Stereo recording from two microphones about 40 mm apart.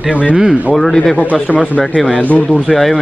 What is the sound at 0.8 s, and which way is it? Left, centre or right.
Speech, centre.